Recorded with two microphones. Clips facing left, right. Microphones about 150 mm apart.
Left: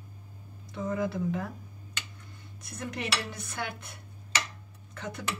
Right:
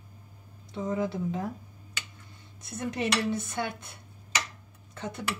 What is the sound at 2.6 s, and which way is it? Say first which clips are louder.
Dishes: right 5 dB; 20° right (ahead or behind).